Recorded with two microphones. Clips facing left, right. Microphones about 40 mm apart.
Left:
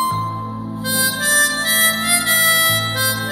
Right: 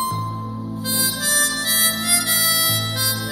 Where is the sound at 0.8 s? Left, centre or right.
Left.